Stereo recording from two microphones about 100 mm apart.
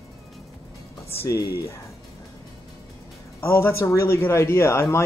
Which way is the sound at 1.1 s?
30° left (ahead or behind).